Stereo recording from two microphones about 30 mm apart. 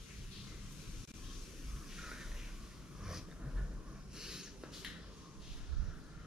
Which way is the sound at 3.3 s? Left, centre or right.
Right.